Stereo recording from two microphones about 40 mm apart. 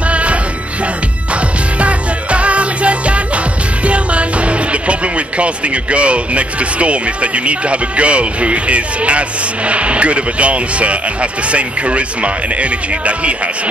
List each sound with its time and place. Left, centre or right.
0.1 s music: right
1.8 s music: right
5.4 s speech: right